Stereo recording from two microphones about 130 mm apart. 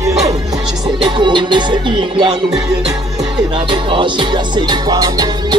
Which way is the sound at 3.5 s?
40° right (ahead or behind).